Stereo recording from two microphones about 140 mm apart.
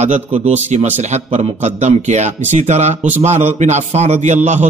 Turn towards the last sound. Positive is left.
turn(degrees=-50)  # may be behind; listen again after turning